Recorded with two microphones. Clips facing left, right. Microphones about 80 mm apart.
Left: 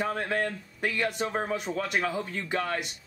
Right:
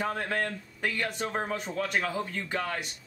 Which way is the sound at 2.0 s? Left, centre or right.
Centre.